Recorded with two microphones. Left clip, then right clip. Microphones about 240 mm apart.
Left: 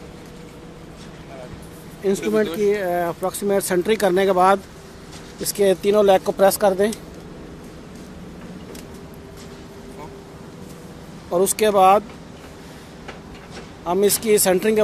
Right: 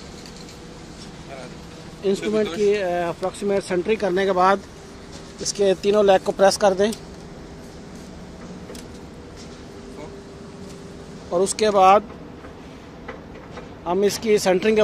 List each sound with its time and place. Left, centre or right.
2.0 s speech: centre
11.3 s speech: centre
13.8 s speech: centre